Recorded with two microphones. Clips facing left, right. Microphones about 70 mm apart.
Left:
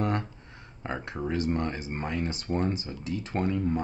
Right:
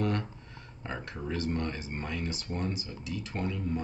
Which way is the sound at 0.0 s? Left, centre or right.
Left.